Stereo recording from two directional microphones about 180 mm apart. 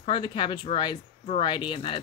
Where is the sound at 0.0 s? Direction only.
30° left (ahead or behind).